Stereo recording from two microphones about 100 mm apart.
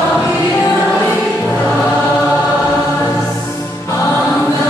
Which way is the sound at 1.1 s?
5° left (ahead or behind).